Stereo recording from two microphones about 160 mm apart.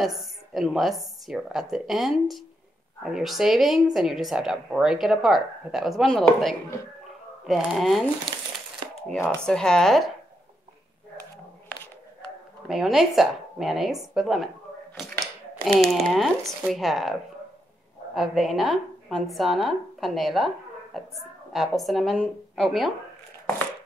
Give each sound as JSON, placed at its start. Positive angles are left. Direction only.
{"t": 0.0, "sound": "speech", "side_deg": 0}
{"t": 8.8, "sound": "a sound", "side_deg": -30}
{"t": 9.4, "sound": "speech", "side_deg": 5}
{"t": 12.6, "sound": "speech", "side_deg": -5}
{"t": 15.0, "sound": "a sound", "side_deg": 0}
{"t": 16.1, "sound": "speech", "side_deg": 0}